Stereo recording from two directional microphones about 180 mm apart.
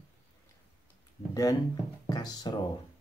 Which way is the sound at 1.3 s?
20° left (ahead or behind).